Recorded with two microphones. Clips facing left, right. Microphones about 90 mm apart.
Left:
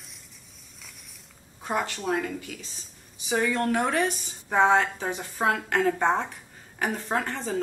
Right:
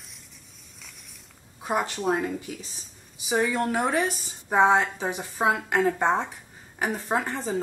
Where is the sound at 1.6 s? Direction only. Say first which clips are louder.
Right 2 dB; 10° right (ahead or behind).